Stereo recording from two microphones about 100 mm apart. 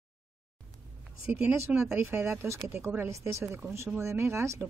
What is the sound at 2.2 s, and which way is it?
Speech, 25° right (ahead or behind).